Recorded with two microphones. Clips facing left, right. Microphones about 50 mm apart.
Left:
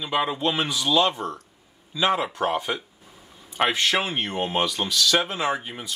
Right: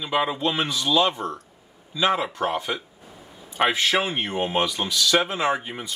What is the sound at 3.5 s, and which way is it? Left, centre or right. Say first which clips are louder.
Speech: right 1 dB; centre.